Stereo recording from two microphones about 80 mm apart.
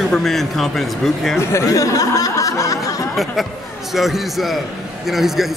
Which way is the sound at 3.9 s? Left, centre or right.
Centre.